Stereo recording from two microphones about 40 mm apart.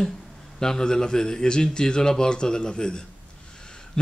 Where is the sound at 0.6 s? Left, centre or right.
Centre.